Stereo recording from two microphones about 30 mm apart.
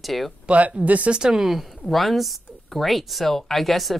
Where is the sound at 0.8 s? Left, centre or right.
Right.